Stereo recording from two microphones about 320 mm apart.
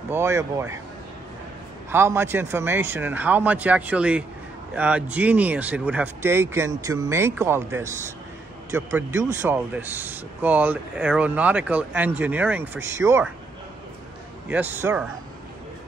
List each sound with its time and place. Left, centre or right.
0.1 s speech: centre
1.9 s speech: centre
14.5 s speech: centre